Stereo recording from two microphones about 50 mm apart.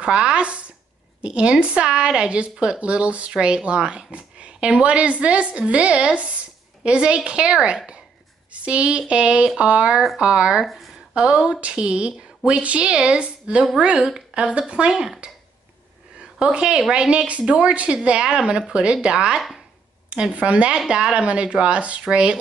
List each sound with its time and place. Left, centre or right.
0.0 s speech: right
10.6 s speech: centre
11.1 s speech: centre
16.2 s a woman's voice: centre